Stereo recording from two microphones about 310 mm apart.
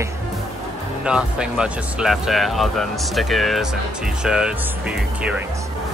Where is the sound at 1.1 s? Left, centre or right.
Centre.